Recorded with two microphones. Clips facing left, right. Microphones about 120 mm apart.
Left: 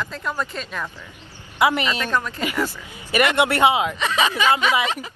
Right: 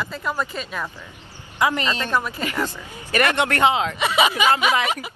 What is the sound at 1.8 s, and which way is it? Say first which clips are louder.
Speech: even; 20° right (ahead or behind).